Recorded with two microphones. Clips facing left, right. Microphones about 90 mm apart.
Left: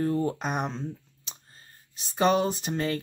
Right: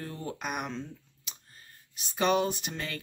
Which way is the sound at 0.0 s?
35° left (ahead or behind).